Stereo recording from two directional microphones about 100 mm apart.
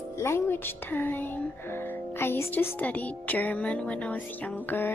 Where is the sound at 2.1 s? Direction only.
25° left (ahead or behind).